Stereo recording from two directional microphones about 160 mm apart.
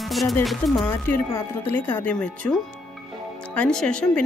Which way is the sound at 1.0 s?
10° left (ahead or behind).